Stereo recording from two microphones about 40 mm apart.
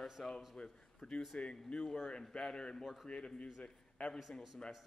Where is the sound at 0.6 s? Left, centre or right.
Left.